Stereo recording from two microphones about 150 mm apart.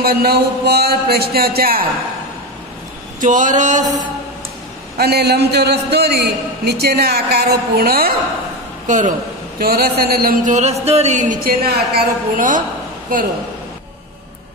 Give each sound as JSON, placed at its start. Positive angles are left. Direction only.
{"t": 0.0, "sound": "a man's voice", "side_deg": -90}
{"t": 3.2, "sound": "speech", "side_deg": -55}
{"t": 4.9, "sound": "a man's voice", "side_deg": -90}
{"t": 8.8, "sound": "a man's voice", "side_deg": -55}
{"t": 9.6, "sound": "speech", "side_deg": -90}
{"t": 11.4, "sound": "a woman's voice", "side_deg": -85}